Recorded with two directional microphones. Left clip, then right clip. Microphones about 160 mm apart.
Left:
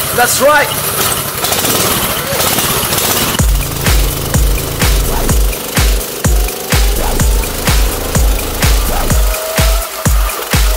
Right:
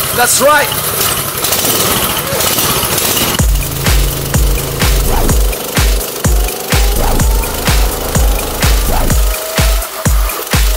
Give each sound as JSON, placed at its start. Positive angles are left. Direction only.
{"t": 0.2, "sound": "speech", "side_deg": 15}
{"t": 3.3, "sound": "music", "side_deg": 0}